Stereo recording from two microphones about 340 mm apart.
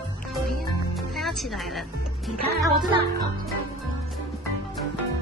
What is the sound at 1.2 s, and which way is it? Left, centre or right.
A woman's voice, centre.